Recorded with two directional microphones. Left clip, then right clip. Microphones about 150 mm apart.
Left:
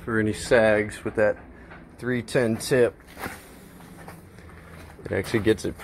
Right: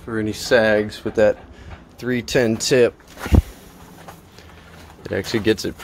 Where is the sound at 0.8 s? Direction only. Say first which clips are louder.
Right 6 dB; 60° right (ahead or behind).